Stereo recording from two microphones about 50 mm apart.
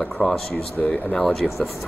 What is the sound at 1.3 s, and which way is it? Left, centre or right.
Speech, centre.